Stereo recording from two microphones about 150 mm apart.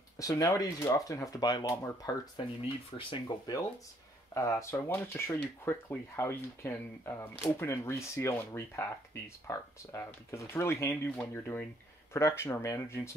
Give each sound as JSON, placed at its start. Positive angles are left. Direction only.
{"t": 0.2, "sound": "speech", "side_deg": 20}